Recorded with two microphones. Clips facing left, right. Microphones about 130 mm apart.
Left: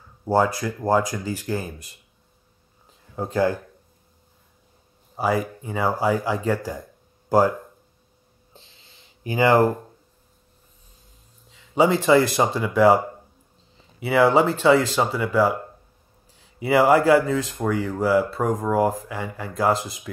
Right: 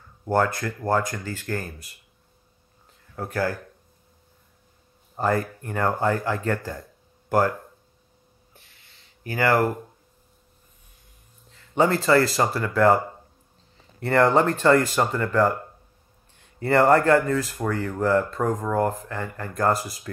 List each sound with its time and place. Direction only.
0.0 s speech: 10° left (ahead or behind)
2.9 s a sound: 20° left (ahead or behind)
5.1 s speech: 10° left (ahead or behind)
8.5 s gasp: 25° left (ahead or behind)
9.3 s speech: 20° left (ahead or behind)
11.4 s speech: 5° left (ahead or behind)
17.4 s speech: 5° right (ahead or behind)
17.6 s speech: 10° left (ahead or behind)
19.7 s speech: 20° left (ahead or behind)